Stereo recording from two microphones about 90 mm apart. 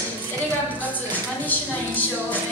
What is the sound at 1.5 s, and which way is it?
Music, 20° left (ahead or behind).